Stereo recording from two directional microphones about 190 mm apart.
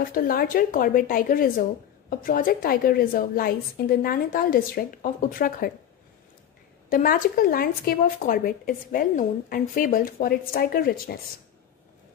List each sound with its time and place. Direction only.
0.0 s speech: 50° left (ahead or behind)
6.9 s speech: 50° left (ahead or behind)